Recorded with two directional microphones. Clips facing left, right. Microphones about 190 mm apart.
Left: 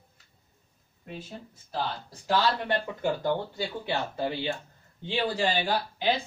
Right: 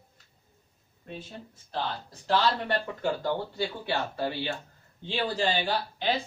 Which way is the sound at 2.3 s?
15° left (ahead or behind).